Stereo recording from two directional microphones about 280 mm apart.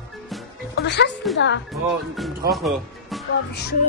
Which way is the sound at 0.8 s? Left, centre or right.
Left.